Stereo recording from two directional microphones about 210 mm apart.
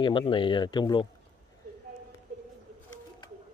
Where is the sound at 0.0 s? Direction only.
25° left (ahead or behind).